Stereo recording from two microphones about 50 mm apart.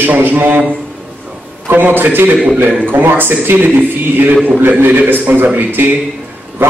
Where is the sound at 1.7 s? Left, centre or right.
Right.